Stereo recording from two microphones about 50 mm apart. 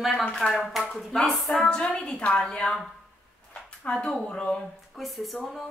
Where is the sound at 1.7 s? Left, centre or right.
Centre.